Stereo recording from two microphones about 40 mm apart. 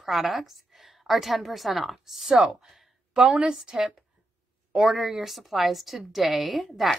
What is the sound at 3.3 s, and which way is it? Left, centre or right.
Speech, right.